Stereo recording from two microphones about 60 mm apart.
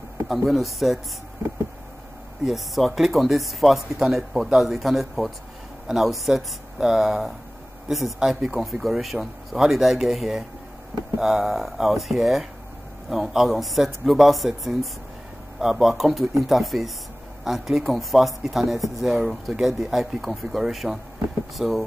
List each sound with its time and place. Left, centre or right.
0.5 s speech: centre
2.4 s speech: centre